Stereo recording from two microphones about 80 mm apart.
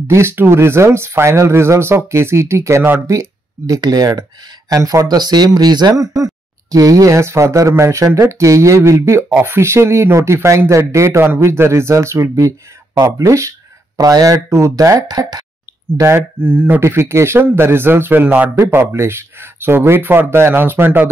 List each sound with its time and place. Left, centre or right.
0.1 s speech: right
16.0 s speech: right